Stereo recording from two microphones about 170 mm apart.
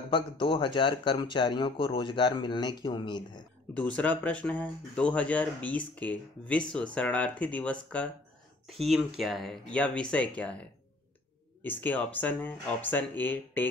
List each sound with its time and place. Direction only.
0.1 s speech: 30° left (ahead or behind)
3.7 s speech: 10° left (ahead or behind)